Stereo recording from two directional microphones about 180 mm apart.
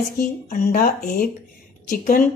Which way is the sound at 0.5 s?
55° left (ahead or behind).